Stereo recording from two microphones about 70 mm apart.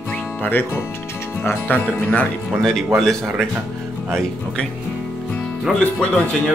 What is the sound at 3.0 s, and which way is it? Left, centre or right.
Speech, centre.